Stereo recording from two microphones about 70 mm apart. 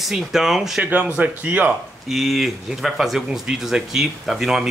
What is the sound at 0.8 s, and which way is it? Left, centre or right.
Speech, right.